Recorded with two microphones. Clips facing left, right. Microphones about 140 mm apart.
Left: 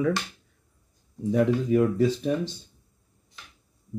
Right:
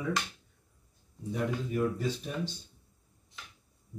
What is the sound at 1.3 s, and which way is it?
Speech, 90° left.